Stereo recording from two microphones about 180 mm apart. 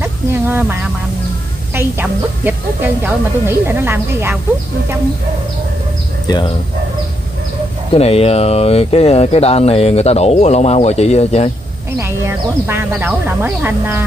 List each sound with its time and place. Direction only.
0.0 s speech: 10° right (ahead or behind)
1.8 s speech: 10° right (ahead or behind)
6.2 s speech: 25° left (ahead or behind)
7.9 s speech: 35° left (ahead or behind)
12.0 s speech: 15° right (ahead or behind)